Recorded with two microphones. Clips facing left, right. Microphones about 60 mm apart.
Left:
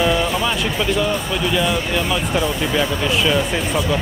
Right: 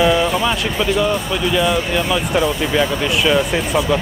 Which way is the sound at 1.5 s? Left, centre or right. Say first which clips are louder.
Right 3 dB; centre.